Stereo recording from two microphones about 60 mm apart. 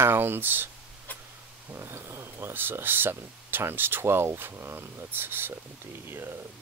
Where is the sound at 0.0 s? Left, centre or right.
Right.